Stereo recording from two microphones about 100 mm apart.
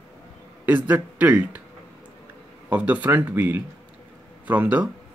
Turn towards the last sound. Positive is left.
turn(degrees=-15)  # may be behind; listen again after turning